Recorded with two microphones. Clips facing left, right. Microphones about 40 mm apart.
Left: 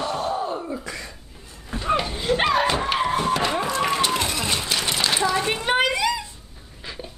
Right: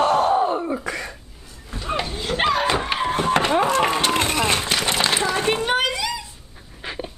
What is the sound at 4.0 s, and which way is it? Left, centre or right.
Run, right.